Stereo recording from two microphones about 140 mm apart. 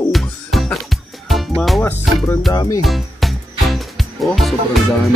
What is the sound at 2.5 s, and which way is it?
Speech, 25° left (ahead or behind).